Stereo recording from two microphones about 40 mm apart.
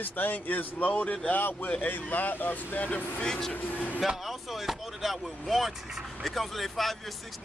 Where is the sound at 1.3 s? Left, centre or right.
Left.